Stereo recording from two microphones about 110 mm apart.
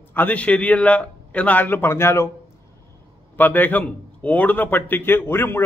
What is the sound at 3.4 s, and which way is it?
A man's voice, 15° left (ahead or behind).